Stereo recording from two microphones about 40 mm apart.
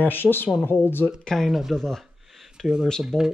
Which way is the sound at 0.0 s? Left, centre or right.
Left.